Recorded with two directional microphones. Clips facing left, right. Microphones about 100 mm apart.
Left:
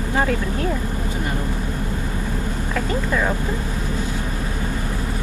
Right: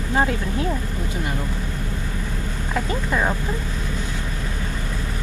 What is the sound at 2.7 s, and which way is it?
Speech, 15° right (ahead or behind).